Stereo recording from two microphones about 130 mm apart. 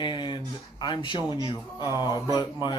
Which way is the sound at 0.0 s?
35° left (ahead or behind).